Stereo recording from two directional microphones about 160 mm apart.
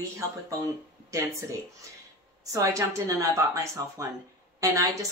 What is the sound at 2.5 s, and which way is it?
Speech, 20° right (ahead or behind).